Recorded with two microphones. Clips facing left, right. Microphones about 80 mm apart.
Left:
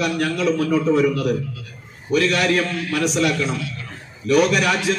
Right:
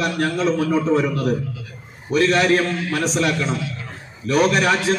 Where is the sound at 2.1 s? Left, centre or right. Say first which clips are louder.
Right 2 dB; right.